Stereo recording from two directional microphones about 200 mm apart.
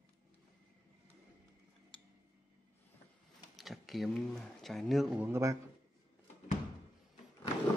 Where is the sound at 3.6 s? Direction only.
Centre (ahead or behind).